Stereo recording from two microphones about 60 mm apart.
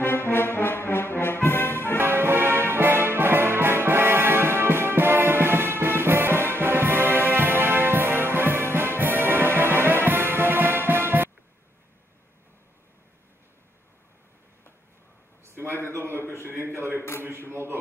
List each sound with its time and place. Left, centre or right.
0.0 s brass instrument: left
2.0 s music: right
15.4 s a sound: right